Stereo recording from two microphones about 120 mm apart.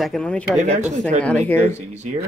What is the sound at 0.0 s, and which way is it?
Speech, 5° left (ahead or behind).